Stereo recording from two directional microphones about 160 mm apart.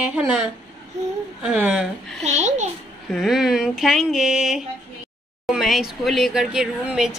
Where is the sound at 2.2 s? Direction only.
45° right (ahead or behind).